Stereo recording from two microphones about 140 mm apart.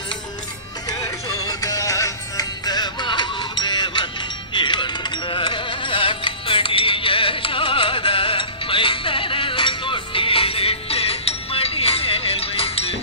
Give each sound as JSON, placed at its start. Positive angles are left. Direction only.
{"t": 0.8, "sound": "music", "side_deg": 25}